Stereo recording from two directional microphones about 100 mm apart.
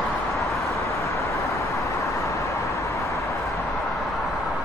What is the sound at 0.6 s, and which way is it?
Vehicle, 30° left (ahead or behind).